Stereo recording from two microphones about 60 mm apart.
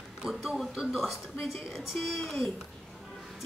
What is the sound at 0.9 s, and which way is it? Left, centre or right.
Speech, centre.